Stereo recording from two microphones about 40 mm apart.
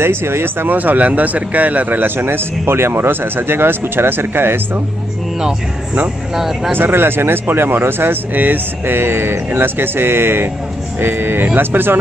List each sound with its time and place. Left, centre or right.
0.0 s speech: right
0.7 s speech: right
2.1 s speech: right
6.3 s speech: centre
6.7 s speech: right
8.9 s speech: right